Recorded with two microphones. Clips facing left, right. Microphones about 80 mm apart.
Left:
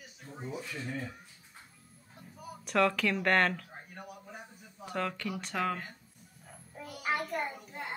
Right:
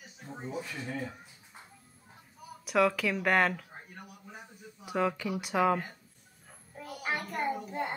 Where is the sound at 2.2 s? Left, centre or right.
Centre.